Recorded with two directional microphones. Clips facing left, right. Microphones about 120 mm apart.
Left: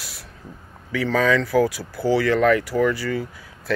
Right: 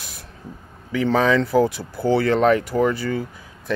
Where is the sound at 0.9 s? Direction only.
20° right (ahead or behind).